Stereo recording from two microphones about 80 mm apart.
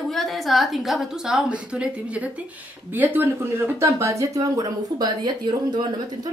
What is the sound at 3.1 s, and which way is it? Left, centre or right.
Speech, right.